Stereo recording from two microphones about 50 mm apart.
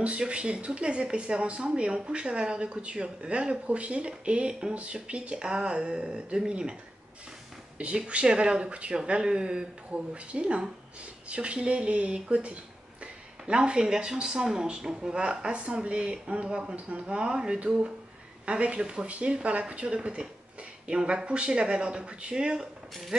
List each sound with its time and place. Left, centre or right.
0.0 s speech: right
7.8 s speech: right